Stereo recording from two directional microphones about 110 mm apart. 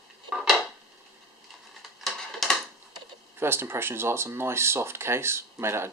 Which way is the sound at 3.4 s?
20° right (ahead or behind).